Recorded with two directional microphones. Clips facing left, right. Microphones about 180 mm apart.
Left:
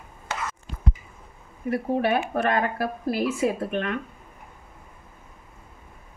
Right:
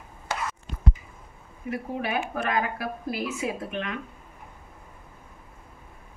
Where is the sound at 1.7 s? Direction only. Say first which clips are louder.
Left 6 dB; 35° left (ahead or behind).